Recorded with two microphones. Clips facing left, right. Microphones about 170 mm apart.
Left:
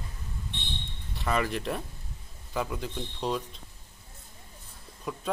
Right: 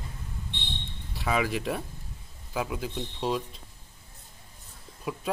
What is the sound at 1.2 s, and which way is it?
Speech, centre (ahead or behind).